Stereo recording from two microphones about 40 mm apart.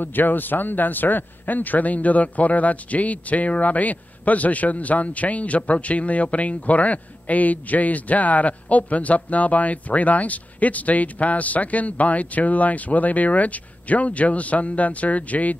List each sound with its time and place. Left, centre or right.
0.0 s speech: left